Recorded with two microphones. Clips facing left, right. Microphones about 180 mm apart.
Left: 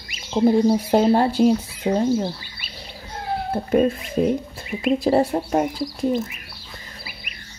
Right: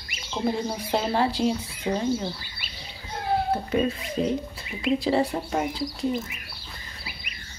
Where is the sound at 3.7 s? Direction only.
50° left (ahead or behind).